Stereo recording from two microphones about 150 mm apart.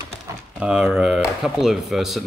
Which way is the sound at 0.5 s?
5° right (ahead or behind).